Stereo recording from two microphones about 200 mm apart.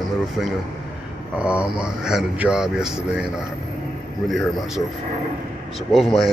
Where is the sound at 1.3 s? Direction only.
5° right (ahead or behind).